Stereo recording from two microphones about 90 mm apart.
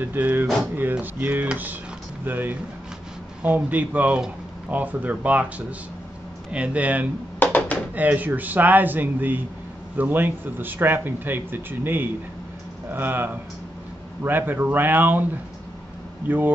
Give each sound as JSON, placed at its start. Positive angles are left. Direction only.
{"t": 0.0, "sound": "speech", "side_deg": -20}
{"t": 6.5, "sound": "speech", "side_deg": -15}
{"t": 7.3, "sound": "a sound", "side_deg": 20}
{"t": 7.9, "sound": "speech", "side_deg": -20}
{"t": 16.3, "sound": "speech", "side_deg": -20}